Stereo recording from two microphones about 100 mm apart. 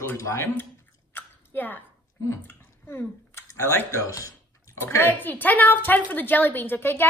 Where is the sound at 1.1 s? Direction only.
20° left (ahead or behind).